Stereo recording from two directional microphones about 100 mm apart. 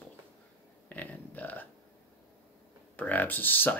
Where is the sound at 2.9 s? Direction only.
15° left (ahead or behind).